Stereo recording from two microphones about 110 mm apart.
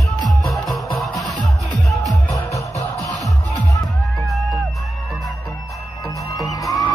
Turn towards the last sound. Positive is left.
turn(degrees=30)  # may be behind; listen again after turning